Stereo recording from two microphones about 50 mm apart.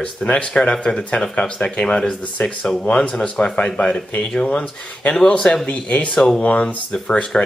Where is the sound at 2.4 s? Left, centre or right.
Left.